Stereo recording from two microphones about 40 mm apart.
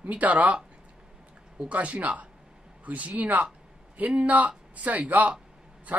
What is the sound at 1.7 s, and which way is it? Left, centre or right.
Speech, right.